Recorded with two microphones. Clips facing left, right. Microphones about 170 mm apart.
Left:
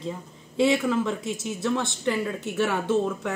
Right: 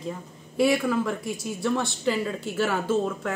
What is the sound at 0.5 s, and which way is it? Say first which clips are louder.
Speech: even; 25° left (ahead or behind).